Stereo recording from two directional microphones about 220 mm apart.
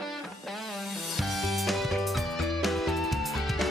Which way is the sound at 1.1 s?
Centre (ahead or behind).